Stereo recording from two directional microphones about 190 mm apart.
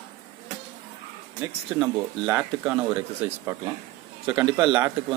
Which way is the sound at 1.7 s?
5° right (ahead or behind).